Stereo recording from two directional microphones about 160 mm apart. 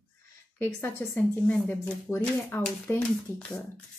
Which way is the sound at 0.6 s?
15° left (ahead or behind).